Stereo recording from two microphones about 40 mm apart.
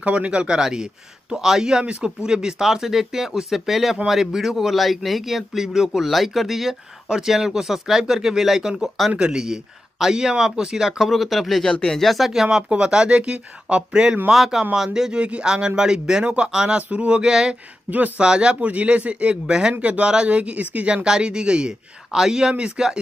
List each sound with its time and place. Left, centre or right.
0.0 s speech: right
0.6 s speech: centre
9.1 s speech: right
9.4 s speech: centre
11.0 s speech: centre
11.7 s speech: left
12.0 s speech: centre
12.4 s speech: centre
14.3 s speech: centre
15.1 s speech: right
17.9 s speech: right
18.2 s speech: right
18.7 s speech: right
19.8 s speech: right; by 22.9 s centre